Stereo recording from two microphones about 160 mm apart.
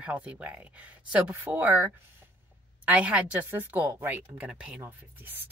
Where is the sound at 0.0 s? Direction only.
10° right (ahead or behind).